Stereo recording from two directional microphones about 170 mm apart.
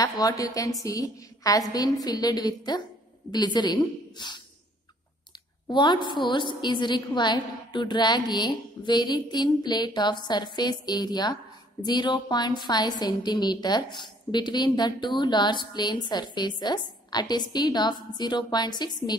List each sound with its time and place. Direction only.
0.2 s a woman's voice: 20° left (ahead or behind)
5.7 s a woman's voice: 25° left (ahead or behind)